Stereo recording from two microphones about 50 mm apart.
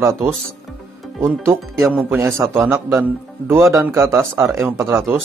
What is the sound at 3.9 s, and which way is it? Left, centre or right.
Speech, right.